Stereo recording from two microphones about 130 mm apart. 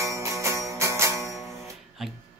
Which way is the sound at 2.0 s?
5° right (ahead or behind).